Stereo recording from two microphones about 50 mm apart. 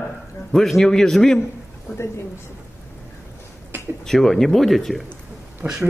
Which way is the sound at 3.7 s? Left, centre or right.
Right.